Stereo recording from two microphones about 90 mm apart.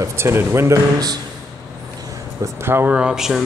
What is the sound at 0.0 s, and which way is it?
Speech, 25° right (ahead or behind).